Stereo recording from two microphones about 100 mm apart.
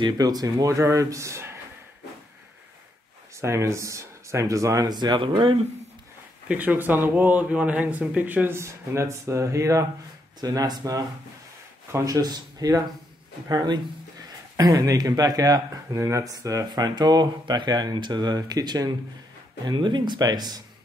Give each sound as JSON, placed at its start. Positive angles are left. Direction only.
{"t": 0.0, "sound": "speech", "side_deg": -40}
{"t": 3.3, "sound": "speech", "side_deg": -30}
{"t": 6.5, "sound": "speech", "side_deg": -15}
{"t": 8.5, "sound": "speech", "side_deg": -30}